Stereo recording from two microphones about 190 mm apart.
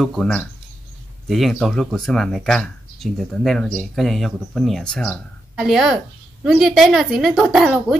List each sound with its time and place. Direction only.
0.0 s speech: 5° left (ahead or behind)